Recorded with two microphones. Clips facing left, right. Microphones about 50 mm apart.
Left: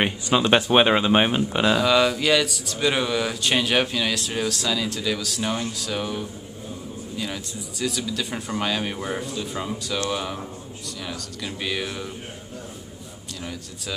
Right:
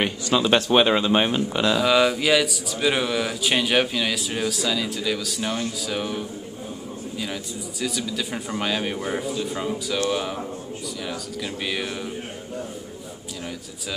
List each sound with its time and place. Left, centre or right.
0.5 s speech: centre
1.8 s speech: centre
7.8 s speech: centre